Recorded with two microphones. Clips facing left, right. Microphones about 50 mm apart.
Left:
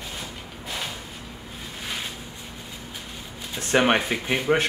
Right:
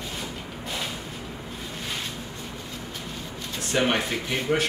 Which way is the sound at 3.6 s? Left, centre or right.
Left.